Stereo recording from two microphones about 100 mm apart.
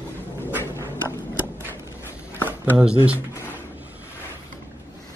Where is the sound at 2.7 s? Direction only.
10° right (ahead or behind).